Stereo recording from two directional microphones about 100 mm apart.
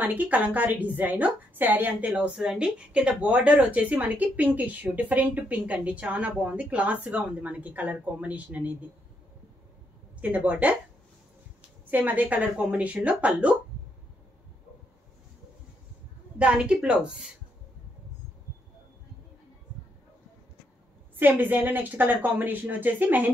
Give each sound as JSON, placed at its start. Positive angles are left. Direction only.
{"t": 0.0, "sound": "a woman's voice", "side_deg": -15}
{"t": 10.2, "sound": "a woman's voice", "side_deg": -15}
{"t": 11.9, "sound": "a woman's voice", "side_deg": -20}
{"t": 16.3, "sound": "a woman's voice", "side_deg": -10}
{"t": 21.2, "sound": "a woman's voice", "side_deg": -20}